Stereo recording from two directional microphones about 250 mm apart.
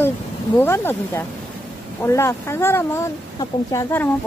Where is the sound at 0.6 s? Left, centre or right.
Centre.